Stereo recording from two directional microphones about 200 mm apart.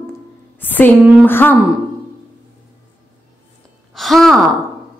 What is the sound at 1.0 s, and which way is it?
Speech, 5° right (ahead or behind).